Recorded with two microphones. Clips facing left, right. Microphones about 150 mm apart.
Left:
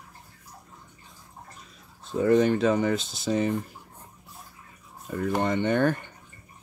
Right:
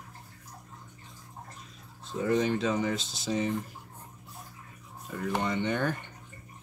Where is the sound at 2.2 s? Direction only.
55° left (ahead or behind).